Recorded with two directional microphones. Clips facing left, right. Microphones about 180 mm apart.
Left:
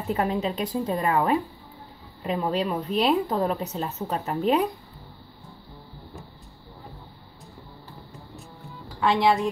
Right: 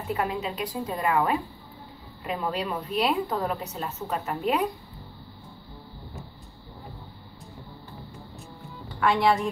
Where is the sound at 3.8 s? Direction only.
30° left (ahead or behind).